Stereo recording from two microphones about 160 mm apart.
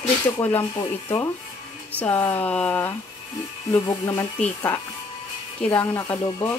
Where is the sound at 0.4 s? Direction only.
10° left (ahead or behind).